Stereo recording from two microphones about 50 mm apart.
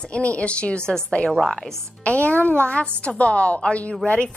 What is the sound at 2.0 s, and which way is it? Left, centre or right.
A woman's voice, left.